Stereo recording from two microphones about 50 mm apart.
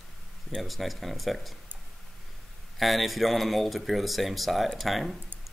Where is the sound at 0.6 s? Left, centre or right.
Centre.